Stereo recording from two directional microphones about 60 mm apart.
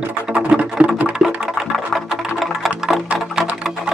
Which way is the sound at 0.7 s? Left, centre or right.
Centre.